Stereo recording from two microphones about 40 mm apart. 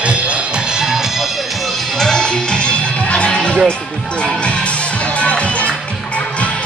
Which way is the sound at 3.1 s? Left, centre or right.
Left.